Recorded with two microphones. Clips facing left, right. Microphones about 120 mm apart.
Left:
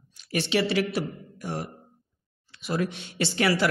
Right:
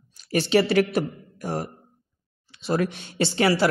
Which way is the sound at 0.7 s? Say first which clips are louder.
Right 5 dB; 50° right (ahead or behind).